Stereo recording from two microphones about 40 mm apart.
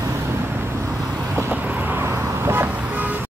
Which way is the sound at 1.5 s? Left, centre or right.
Right.